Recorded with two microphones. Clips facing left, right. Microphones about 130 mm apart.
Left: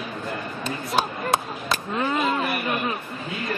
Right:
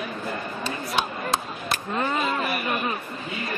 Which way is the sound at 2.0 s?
Centre (ahead or behind).